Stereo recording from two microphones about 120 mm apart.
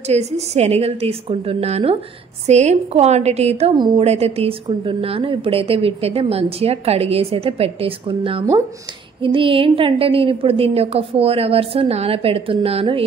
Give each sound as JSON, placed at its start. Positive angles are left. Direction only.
{"t": 0.1, "sound": "a woman's voice", "side_deg": -60}
{"t": 2.4, "sound": "a woman's voice", "side_deg": -70}
{"t": 3.7, "sound": "a woman's voice", "side_deg": -40}
{"t": 4.0, "sound": "a woman's voice", "side_deg": -60}